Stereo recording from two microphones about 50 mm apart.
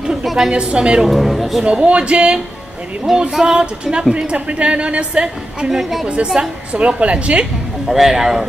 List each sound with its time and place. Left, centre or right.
0.2 s a woman's voice: centre
0.5 s speech: centre
1.0 s speech: centre
1.6 s speech: centre
3.2 s speech: centre
5.7 s speech: centre
6.0 s speech: centre
7.9 s speech: centre